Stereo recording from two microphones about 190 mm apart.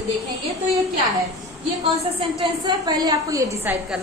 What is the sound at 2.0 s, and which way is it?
A woman's voice, 30° right (ahead or behind).